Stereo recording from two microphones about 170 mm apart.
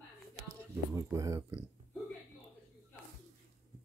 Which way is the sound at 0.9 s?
20° right (ahead or behind).